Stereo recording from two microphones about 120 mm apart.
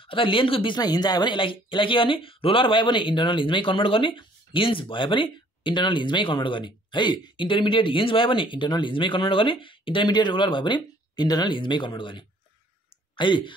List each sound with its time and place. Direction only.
0.0 s speech: 45° left (ahead or behind)
0.7 s speech: 35° left (ahead or behind)